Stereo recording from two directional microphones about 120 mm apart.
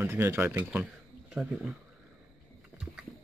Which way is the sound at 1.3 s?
5° right (ahead or behind).